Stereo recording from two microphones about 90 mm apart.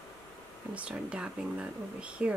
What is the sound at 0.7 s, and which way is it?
Speech, 10° right (ahead or behind).